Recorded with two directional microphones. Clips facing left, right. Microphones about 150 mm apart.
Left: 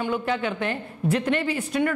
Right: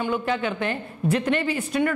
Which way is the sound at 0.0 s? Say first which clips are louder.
Right 1 dB; 15° right (ahead or behind).